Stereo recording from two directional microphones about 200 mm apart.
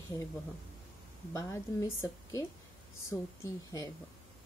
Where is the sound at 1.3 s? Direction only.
15° left (ahead or behind).